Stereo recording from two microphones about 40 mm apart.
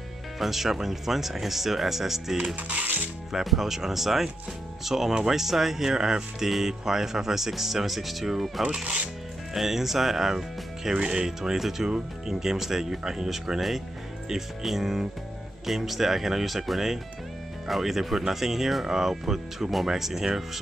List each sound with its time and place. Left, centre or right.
0.4 s speech: centre
3.4 s speech: centre
8.6 s speech: right
9.5 s speech: centre